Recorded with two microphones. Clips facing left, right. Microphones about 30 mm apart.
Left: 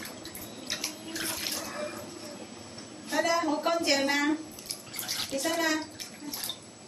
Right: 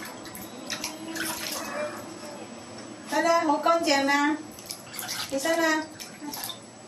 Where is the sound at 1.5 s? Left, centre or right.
Centre.